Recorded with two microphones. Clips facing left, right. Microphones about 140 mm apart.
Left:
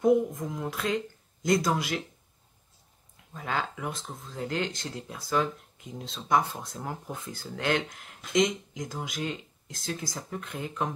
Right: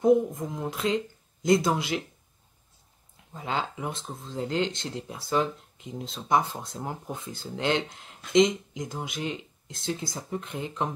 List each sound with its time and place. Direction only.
0.0 s speech: 25° right (ahead or behind)
3.3 s speech: 20° right (ahead or behind)